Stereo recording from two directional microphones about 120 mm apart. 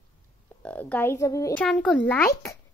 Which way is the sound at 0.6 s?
10° left (ahead or behind).